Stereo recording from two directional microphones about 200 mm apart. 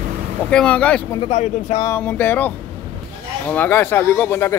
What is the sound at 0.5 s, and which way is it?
Speech, 5° left (ahead or behind).